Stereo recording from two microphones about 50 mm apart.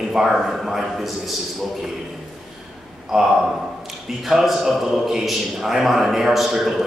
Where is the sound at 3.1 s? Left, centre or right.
Centre.